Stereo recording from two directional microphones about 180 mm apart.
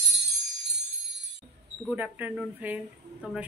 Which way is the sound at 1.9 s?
10° right (ahead or behind).